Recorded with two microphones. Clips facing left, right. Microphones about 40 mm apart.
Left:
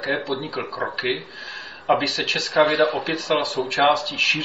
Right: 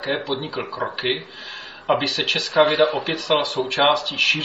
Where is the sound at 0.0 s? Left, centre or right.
Right.